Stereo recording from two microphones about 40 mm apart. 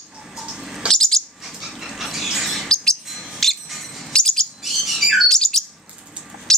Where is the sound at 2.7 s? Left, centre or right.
Centre.